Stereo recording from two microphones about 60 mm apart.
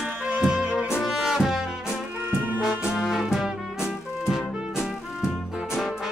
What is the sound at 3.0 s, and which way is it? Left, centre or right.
Music, centre.